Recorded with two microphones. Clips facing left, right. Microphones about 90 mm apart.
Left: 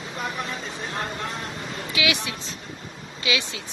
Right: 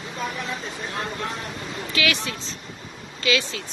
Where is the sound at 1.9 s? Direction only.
15° left (ahead or behind).